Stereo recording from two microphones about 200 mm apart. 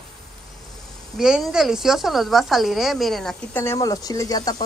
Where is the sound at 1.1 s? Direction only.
Centre (ahead or behind).